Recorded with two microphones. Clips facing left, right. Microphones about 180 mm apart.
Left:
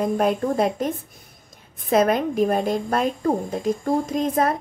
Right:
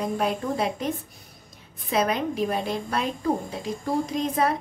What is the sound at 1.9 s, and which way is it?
A woman's voice, 50° left (ahead or behind).